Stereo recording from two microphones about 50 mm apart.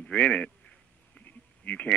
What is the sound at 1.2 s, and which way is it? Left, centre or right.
Sheep, left.